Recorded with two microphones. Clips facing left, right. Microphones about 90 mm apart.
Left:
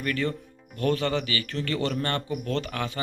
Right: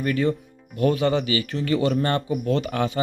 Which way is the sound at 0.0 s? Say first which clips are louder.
Right 6 dB; 20° right (ahead or behind).